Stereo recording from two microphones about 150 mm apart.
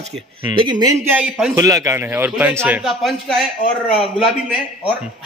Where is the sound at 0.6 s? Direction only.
30° right (ahead or behind).